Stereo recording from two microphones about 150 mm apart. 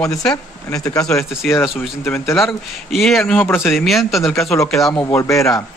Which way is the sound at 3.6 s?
Centre (ahead or behind).